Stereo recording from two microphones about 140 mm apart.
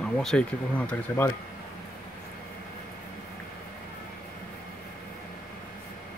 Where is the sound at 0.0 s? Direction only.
5° left (ahead or behind).